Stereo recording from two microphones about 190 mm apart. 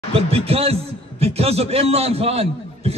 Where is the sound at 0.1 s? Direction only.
30° right (ahead or behind).